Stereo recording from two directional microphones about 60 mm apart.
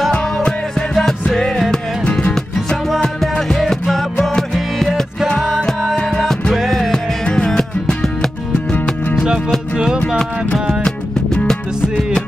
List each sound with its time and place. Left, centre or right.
0.1 s music: centre
2.0 s music: left
2.3 s music: centre
6.5 s music: centre
9.9 s music: centre